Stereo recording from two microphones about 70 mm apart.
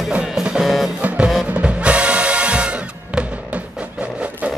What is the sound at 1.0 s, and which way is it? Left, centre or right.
Music, centre.